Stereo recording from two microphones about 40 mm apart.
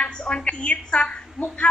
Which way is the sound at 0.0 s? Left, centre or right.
Left.